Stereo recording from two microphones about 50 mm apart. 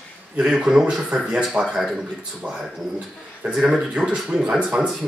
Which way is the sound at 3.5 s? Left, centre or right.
Centre.